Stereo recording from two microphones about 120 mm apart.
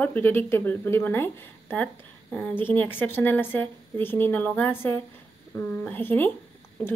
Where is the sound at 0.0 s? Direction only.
15° left (ahead or behind).